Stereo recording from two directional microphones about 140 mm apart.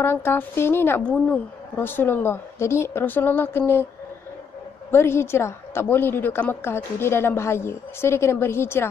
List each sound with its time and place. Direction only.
0.0 s a woman's voice: 15° left (ahead or behind)
4.9 s a woman's voice: 20° left (ahead or behind)